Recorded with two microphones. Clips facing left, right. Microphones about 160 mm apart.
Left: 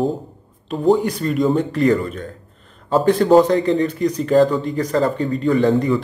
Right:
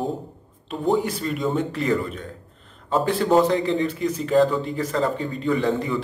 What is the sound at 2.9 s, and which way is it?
Speech, 45° left (ahead or behind).